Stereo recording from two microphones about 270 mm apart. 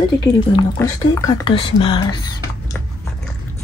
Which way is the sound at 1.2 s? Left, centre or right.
Centre.